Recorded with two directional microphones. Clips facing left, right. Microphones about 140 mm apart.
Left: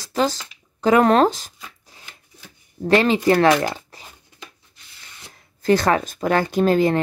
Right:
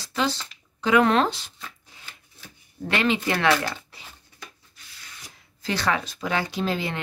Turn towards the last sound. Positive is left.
turn(degrees=45)  # may be behind; listen again after turning